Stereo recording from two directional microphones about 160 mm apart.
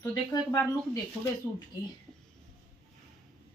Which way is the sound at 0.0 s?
25° left (ahead or behind).